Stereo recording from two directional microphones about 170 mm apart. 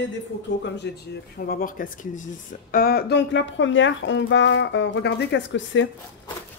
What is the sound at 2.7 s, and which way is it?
Speech, 65° left (ahead or behind).